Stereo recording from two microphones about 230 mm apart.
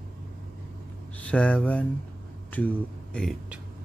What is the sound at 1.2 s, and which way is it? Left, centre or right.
Speech, centre.